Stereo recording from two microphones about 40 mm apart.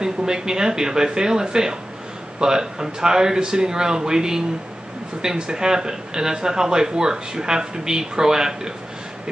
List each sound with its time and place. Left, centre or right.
0.0 s speech: centre